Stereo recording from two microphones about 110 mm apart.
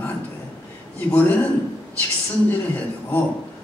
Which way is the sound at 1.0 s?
15° left (ahead or behind).